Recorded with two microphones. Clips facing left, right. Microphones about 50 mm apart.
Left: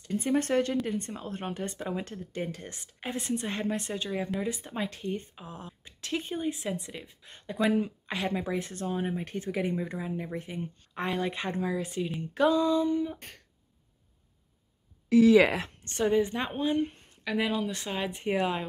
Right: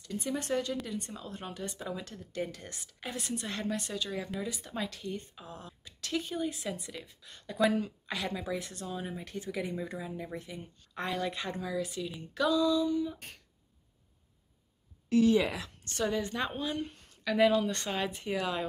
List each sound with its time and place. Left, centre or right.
0.0 s speech: left
15.8 s a woman's voice: left
17.2 s speech: centre
18.1 s speech: left